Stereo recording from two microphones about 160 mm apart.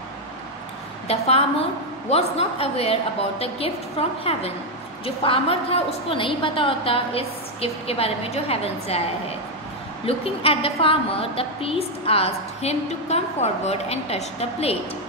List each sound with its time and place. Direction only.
1.0 s a woman's voice: 40° left (ahead or behind)
10.0 s a woman's voice: 35° left (ahead or behind)